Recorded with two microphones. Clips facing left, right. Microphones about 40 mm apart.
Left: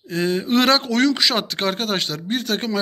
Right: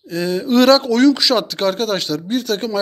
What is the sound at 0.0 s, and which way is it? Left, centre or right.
Speech, left.